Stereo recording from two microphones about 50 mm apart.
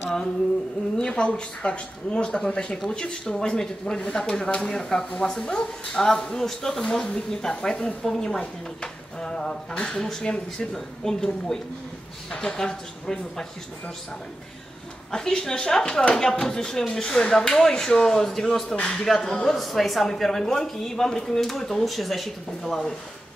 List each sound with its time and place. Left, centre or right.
0.9 s speech: centre
15.0 s speech: centre